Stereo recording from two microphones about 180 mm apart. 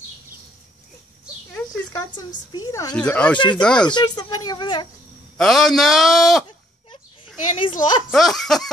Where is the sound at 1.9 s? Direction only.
20° left (ahead or behind).